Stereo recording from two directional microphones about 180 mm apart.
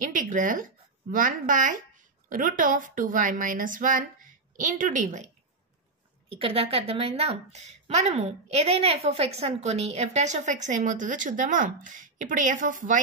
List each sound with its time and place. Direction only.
0.0 s a sound: 45° right (ahead or behind)
1.1 s speech: 50° right (ahead or behind)
6.2 s a woman's voice: 30° right (ahead or behind); by 13.0 s 45° right (ahead or behind)